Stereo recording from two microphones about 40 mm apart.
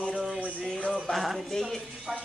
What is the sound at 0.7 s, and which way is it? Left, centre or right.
Music, left.